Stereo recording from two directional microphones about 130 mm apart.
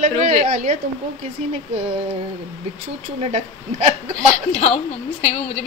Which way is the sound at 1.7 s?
55° right (ahead or behind).